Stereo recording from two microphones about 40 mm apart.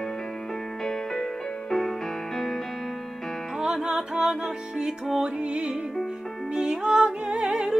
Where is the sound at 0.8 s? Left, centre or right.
Centre.